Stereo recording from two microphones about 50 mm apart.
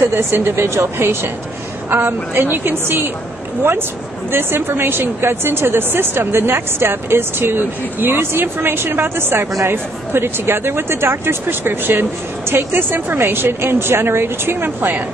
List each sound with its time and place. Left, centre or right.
0.0 s speech: right
1.9 s speech: right
4.3 s speech: right